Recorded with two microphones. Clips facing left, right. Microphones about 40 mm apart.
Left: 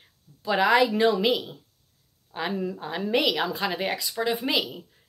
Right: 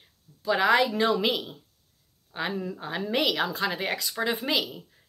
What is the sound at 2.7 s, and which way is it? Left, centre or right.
A woman's voice, centre.